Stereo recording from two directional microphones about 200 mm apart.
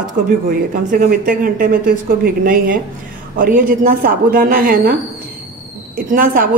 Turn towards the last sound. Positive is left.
turn(degrees=-45)  # may be behind; listen again after turning